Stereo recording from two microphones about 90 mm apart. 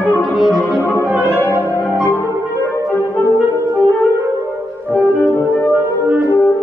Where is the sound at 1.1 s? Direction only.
15° right (ahead or behind).